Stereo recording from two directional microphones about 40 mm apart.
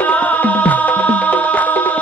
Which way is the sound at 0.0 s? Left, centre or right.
Left.